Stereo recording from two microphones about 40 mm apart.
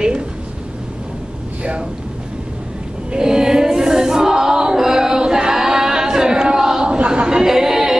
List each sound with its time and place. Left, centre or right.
1.6 s speech: right
3.1 s choir: centre
7.1 s a capella: right